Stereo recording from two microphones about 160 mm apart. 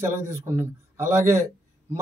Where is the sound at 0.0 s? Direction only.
15° right (ahead or behind).